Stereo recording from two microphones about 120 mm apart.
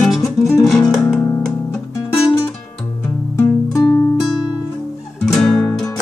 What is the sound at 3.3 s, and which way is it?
Music, 25° left (ahead or behind).